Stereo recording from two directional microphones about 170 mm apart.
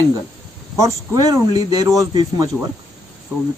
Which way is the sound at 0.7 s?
20° right (ahead or behind).